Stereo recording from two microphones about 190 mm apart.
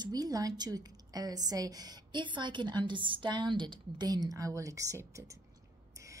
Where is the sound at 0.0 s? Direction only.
20° right (ahead or behind).